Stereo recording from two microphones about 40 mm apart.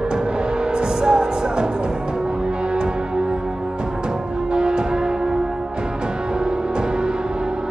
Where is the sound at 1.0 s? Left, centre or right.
Right.